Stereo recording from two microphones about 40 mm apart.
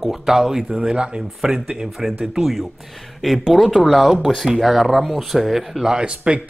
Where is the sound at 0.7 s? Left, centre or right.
Right; by 5.9 s centre.